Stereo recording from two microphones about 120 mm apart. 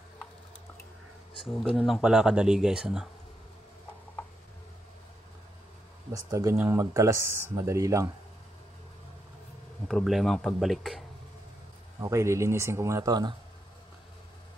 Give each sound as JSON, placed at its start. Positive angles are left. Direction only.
{"t": 1.4, "sound": "speech", "side_deg": 0}
{"t": 6.1, "sound": "speech", "side_deg": -25}
{"t": 9.8, "sound": "speech", "side_deg": 0}
{"t": 12.0, "sound": "speech", "side_deg": -25}